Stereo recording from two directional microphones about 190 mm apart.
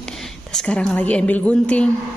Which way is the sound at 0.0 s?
5° left (ahead or behind).